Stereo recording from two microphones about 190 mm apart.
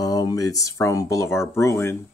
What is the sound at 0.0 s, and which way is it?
Speech, 20° left (ahead or behind).